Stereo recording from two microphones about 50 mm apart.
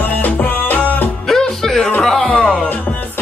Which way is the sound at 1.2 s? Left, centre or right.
Centre.